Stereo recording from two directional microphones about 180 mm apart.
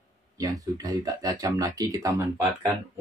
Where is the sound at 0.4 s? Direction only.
20° right (ahead or behind).